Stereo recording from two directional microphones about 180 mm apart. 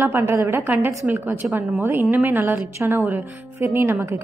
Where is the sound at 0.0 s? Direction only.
15° right (ahead or behind).